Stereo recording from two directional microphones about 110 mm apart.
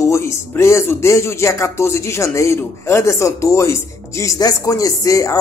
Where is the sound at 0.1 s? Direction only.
25° left (ahead or behind).